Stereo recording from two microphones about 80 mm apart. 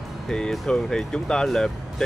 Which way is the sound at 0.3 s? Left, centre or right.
Centre.